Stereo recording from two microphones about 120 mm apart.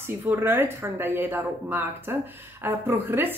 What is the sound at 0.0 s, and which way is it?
Speech, 15° right (ahead or behind).